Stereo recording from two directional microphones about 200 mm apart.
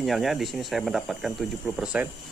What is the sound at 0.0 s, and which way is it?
Speech, centre (ahead or behind).